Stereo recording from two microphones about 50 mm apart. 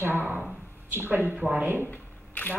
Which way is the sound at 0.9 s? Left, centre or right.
Right.